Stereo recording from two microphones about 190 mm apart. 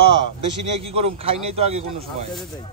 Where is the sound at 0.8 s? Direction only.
30° right (ahead or behind).